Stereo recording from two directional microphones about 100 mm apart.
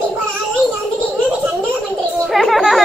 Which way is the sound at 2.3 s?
Centre (ahead or behind).